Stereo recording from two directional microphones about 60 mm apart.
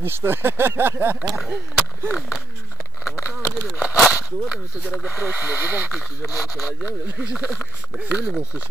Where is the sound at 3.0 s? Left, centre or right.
Left.